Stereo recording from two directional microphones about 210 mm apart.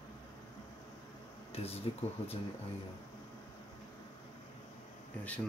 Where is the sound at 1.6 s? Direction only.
25° left (ahead or behind).